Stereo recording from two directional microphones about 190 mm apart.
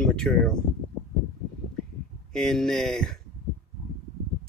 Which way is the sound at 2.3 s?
Centre (ahead or behind).